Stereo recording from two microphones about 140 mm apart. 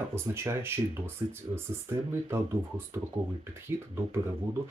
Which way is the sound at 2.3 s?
20° right (ahead or behind).